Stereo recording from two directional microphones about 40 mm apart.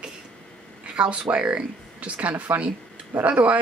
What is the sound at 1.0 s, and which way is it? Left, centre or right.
Speech, right.